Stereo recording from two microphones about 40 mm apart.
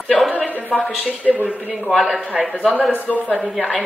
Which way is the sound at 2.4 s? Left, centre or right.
Right.